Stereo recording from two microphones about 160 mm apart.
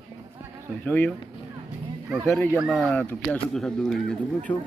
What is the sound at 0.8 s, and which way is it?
Speech, 10° left (ahead or behind).